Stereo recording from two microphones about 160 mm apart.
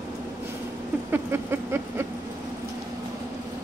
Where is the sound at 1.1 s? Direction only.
15° right (ahead or behind).